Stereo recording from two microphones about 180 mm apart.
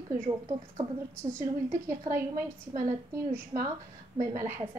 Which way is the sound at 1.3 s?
15° right (ahead or behind).